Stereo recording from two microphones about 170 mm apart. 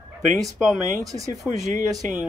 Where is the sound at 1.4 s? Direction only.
5° right (ahead or behind).